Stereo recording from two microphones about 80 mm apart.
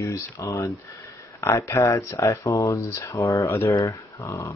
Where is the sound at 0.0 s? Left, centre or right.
Left.